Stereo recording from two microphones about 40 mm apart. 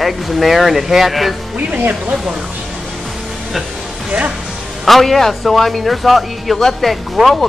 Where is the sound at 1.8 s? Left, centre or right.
Right.